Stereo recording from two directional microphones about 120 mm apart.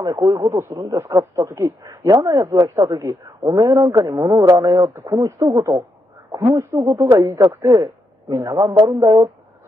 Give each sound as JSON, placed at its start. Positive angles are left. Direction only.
{"t": 0.0, "sound": "a man's voice", "side_deg": -30}